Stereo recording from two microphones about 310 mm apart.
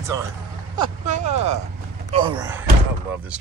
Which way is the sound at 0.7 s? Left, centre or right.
Right.